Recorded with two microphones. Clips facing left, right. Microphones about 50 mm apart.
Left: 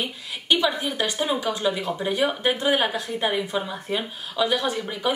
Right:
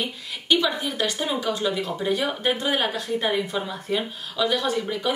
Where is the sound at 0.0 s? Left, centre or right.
Centre.